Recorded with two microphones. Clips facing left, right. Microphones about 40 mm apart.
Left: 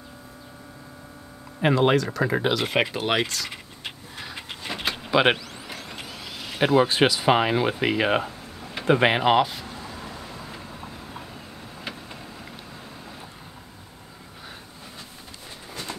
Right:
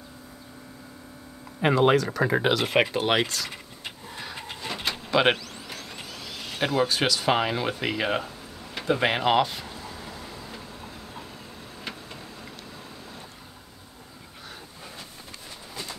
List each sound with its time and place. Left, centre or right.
1.6 s speech: centre
5.1 s vehicle: centre
6.9 s speech: left
7.2 s speech: centre
8.8 s speech: left
9.1 s speech: centre
9.8 s vehicle: centre